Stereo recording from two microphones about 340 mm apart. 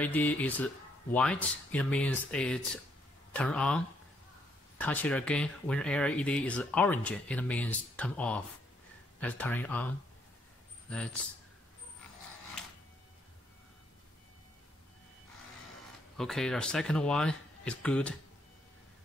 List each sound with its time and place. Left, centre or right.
0.0 s speech: centre
16.2 s speech: centre